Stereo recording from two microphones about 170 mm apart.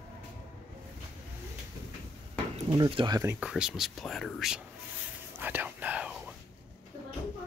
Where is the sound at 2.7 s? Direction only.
25° right (ahead or behind).